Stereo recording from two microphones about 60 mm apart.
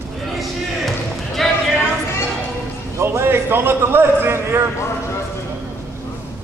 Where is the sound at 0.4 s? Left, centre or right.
Centre.